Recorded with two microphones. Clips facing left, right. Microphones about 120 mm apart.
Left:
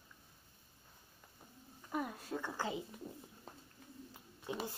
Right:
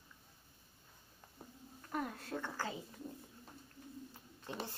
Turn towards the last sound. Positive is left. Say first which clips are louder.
# left 3 dB
turn(degrees=10)  # may be behind; listen again after turning